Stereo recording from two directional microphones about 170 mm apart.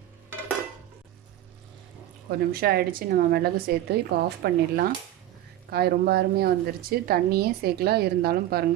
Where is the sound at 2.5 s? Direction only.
65° right (ahead or behind).